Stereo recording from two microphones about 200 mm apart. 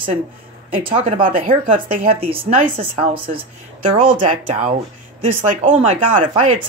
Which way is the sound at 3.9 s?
40° right (ahead or behind).